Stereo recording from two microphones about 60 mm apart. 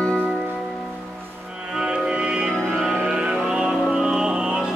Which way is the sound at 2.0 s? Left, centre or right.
Centre.